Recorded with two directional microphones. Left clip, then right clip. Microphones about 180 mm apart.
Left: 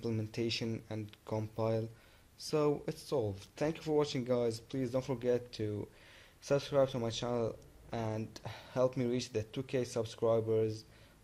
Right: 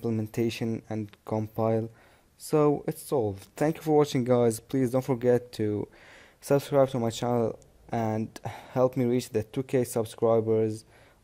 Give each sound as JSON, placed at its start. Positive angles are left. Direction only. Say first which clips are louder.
{"t": 0.0, "sound": "speech", "louder": "right 8 dB", "side_deg": -50}